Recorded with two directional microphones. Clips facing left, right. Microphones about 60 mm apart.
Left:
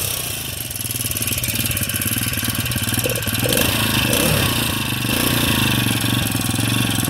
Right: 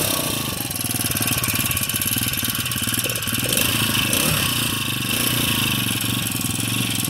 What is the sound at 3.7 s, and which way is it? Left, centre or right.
Motorcycle, left.